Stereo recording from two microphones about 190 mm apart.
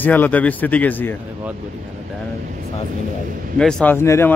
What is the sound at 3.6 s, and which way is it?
Speech, 5° left (ahead or behind).